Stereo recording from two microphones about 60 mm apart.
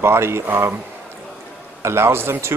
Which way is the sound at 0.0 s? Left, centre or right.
Right.